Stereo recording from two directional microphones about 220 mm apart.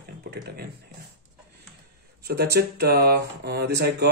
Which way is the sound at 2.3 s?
45° right (ahead or behind).